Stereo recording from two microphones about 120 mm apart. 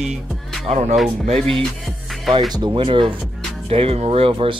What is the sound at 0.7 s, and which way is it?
Speech, 75° right (ahead or behind).